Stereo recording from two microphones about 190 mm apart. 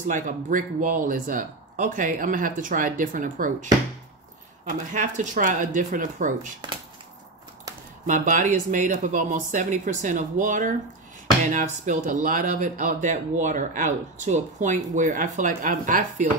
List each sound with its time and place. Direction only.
0.1 s speech: 45° right (ahead or behind)
4.6 s speech: 40° right (ahead or behind)
8.1 s speech: 40° right (ahead or behind)